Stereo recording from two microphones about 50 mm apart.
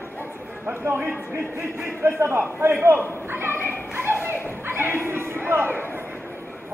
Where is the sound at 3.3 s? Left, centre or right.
Right.